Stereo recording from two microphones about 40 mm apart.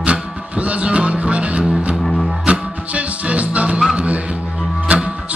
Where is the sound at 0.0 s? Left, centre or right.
Right.